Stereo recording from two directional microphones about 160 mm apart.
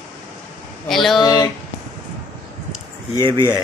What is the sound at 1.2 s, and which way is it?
Speech, 25° left (ahead or behind).